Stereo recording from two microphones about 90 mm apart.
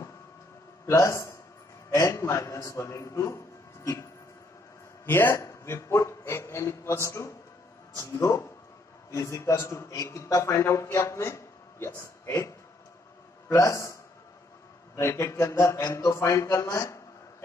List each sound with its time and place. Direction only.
0.8 s a man's voice: 35° left (ahead or behind)
3.8 s a sound: 35° left (ahead or behind)
5.0 s a man's voice: 25° left (ahead or behind)
15.0 s a man's voice: 35° left (ahead or behind)